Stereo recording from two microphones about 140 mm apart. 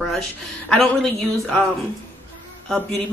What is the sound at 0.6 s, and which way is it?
Speech, 5° left (ahead or behind).